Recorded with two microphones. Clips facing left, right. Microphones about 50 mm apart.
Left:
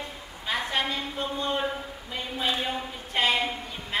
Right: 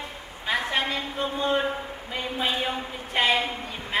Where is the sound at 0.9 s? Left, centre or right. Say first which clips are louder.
Right 2 dB; right.